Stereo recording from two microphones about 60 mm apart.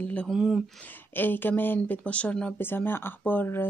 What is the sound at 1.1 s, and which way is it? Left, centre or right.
Speech, left.